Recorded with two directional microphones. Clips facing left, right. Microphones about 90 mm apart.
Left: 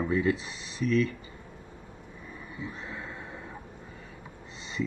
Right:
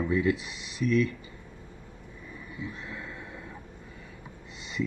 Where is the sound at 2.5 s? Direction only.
25° left (ahead or behind).